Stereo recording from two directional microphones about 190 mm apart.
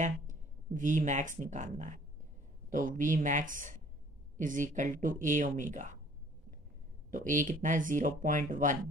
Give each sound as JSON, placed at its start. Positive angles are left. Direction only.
{"t": 0.0, "sound": "a sound", "side_deg": -40}
{"t": 1.4, "sound": "speech", "side_deg": -40}
{"t": 7.1, "sound": "speech", "side_deg": -45}